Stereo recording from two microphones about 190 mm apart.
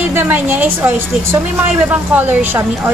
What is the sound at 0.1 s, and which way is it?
A woman's voice, 10° right (ahead or behind).